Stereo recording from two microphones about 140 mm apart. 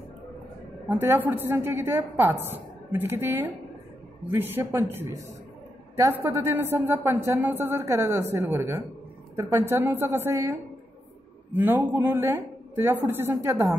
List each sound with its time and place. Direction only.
0.8 s a woman's voice: 15° right (ahead or behind)